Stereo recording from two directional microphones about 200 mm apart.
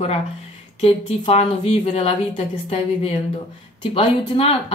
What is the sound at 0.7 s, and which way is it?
A woman's voice, 30° left (ahead or behind).